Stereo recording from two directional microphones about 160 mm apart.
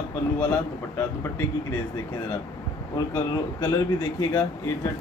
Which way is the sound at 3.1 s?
20° left (ahead or behind).